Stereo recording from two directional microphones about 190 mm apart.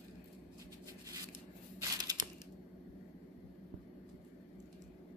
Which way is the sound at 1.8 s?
20° right (ahead or behind).